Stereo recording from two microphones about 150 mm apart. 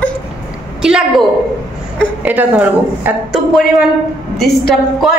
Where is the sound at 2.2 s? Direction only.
10° right (ahead or behind).